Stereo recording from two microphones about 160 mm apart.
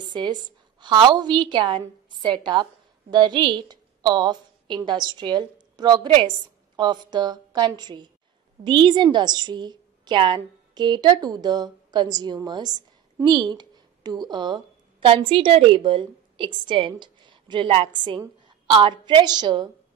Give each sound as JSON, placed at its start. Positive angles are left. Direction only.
{"t": 0.0, "sound": "a woman's voice", "side_deg": -25}